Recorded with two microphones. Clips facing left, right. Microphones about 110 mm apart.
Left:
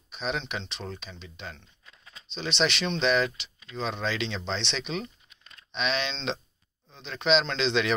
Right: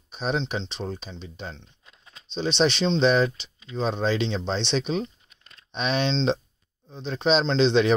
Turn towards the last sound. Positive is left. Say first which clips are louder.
# right 7 dB
turn(degrees=-35)  # may be behind; listen again after turning